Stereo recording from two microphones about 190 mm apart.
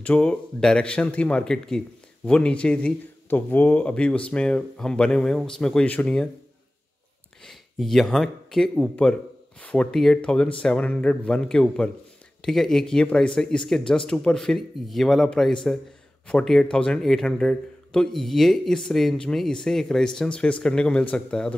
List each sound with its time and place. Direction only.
0.0 s a man's voice: 5° left (ahead or behind)
7.4 s a man's voice: centre (ahead or behind)